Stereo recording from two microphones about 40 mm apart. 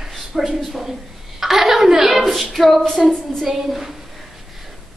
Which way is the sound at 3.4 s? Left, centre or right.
Centre.